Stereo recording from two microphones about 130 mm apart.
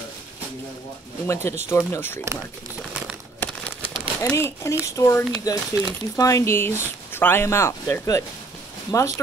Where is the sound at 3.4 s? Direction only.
10° left (ahead or behind).